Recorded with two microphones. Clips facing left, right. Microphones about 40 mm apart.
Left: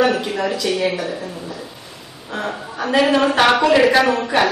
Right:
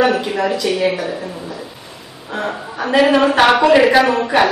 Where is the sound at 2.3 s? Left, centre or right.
Centre.